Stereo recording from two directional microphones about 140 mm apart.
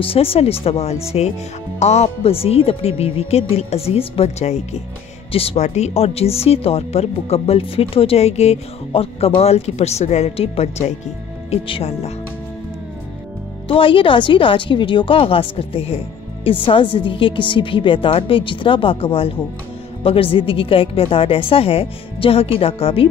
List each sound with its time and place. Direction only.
0.0 s speech: 40° left (ahead or behind)
13.7 s speech: 40° left (ahead or behind)